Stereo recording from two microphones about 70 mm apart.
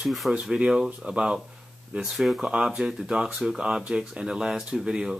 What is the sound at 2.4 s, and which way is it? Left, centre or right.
Speech, centre.